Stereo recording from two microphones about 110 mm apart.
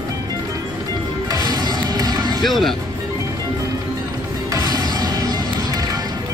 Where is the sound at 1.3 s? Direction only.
35° right (ahead or behind).